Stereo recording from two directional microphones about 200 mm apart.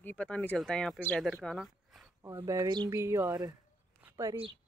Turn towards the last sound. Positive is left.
turn(degrees=-20)  # may be behind; listen again after turning